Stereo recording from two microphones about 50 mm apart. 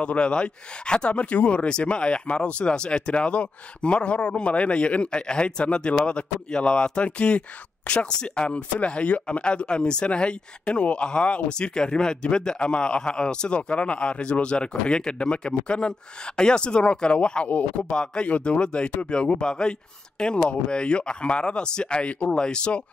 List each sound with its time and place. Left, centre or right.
0.0 s speech: left